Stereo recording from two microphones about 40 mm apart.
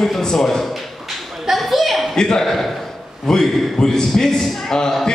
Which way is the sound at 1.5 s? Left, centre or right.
Centre.